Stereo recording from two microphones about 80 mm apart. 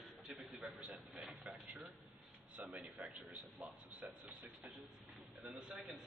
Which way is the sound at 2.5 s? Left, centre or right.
Centre.